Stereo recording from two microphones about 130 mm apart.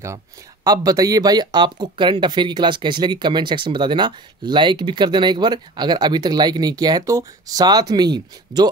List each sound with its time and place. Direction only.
0.7 s speech: 30° right (ahead or behind)